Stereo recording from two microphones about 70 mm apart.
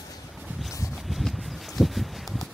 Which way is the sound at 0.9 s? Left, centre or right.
Centre.